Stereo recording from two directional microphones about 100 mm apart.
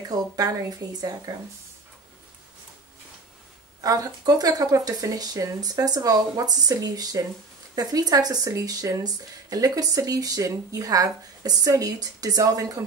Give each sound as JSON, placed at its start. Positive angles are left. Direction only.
{"t": 0.1, "sound": "speech", "side_deg": -40}
{"t": 3.8, "sound": "speech", "side_deg": -35}